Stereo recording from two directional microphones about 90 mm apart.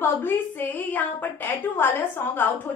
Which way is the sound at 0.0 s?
25° left (ahead or behind).